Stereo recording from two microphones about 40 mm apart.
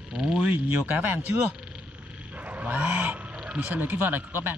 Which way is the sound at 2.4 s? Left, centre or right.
Right.